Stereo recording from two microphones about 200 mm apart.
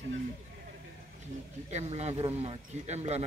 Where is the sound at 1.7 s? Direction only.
35° right (ahead or behind).